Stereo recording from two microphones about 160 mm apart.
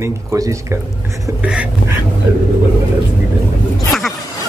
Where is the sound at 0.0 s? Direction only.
20° right (ahead or behind).